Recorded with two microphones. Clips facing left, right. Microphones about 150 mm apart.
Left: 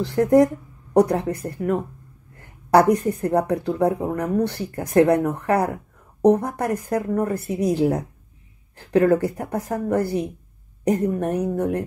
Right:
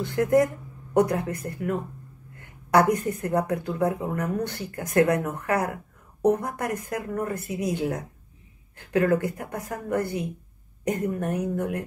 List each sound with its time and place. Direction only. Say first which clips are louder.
0.0 s a woman's voice: left 5 dB; 35° left (ahead or behind)